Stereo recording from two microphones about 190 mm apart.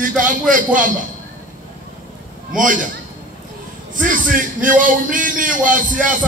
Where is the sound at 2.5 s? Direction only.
45° right (ahead or behind).